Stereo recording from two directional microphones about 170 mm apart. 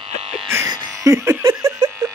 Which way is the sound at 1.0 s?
15° right (ahead or behind).